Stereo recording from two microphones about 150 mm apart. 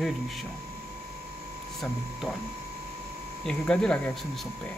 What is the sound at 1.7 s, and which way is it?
Speech, centre (ahead or behind).